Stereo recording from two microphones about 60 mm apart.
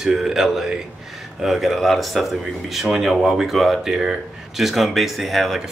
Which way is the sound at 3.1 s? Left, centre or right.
Centre.